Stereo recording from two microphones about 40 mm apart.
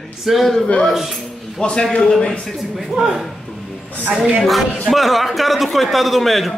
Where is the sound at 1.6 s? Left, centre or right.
Left.